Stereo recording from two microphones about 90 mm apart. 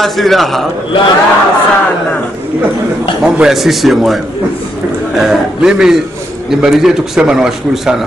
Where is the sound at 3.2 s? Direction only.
5° right (ahead or behind).